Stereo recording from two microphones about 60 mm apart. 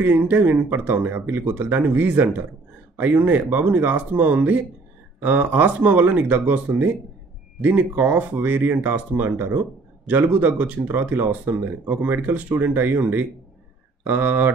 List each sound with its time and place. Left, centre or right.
0.0 s speech: right
7.6 s speech: right